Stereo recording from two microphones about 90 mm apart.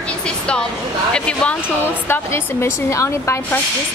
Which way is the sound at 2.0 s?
30° left (ahead or behind).